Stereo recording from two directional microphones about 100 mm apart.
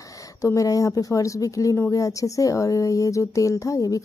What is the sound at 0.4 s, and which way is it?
Speech, 30° left (ahead or behind).